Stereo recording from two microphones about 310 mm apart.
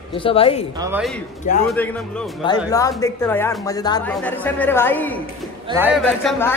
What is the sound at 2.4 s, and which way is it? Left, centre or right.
Speech, centre.